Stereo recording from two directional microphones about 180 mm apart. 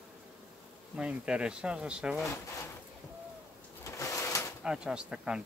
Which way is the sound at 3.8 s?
15° left (ahead or behind).